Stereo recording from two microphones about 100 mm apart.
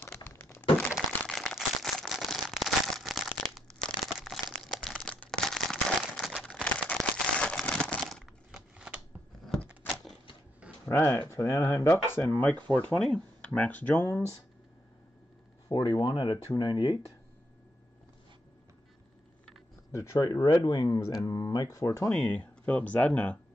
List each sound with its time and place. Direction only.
0.3 s crack: 25° left (ahead or behind)
0.9 s a sound: centre (ahead or behind)
4.2 s crumpling: centre (ahead or behind)
6.6 s a sound: 10° left (ahead or behind); by 9.0 s 10° right (ahead or behind)
10.9 s speech: 20° left (ahead or behind)
15.7 s speech: 55° left (ahead or behind)
19.9 s speech: 30° left (ahead or behind)
20.6 s speech: 50° left (ahead or behind)
20.9 s speech: 30° left (ahead or behind)
22.1 s speech: 15° left (ahead or behind)